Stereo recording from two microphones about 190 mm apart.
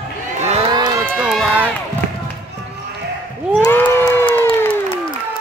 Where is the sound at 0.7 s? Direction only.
20° right (ahead or behind).